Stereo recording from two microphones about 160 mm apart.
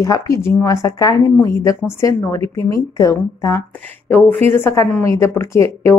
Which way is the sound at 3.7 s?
10° left (ahead or behind).